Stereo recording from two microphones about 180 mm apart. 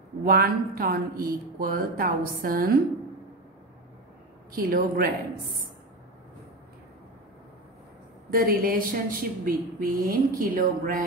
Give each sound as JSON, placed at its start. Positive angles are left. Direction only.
{"t": 0.2, "sound": "speech", "side_deg": -55}
{"t": 4.5, "sound": "a man's voice", "side_deg": -55}
{"t": 8.3, "sound": "speech", "side_deg": -55}